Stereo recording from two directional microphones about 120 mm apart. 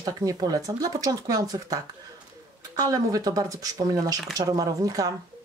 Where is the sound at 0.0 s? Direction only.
30° right (ahead or behind).